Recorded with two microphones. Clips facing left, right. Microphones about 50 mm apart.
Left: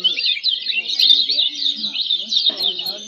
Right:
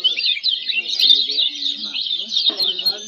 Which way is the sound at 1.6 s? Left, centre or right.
Right.